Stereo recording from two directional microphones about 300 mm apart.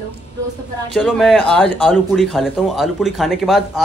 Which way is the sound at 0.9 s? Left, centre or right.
Centre.